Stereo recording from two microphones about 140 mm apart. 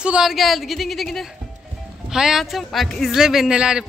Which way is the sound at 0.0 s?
5° right (ahead or behind).